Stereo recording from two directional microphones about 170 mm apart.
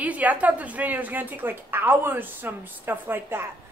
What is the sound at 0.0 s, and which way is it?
A woman's voice, 10° right (ahead or behind).